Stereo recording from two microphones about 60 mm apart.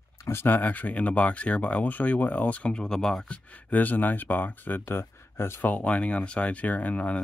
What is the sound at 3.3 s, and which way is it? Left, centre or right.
Speech, left.